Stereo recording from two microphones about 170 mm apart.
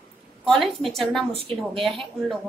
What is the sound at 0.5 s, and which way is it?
Speech, centre (ahead or behind).